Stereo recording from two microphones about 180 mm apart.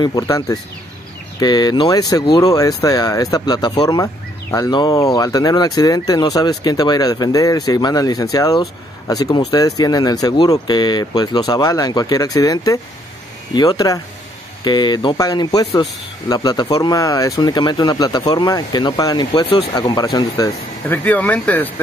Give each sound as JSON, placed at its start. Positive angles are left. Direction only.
{"t": 0.0, "sound": "speech", "side_deg": 20}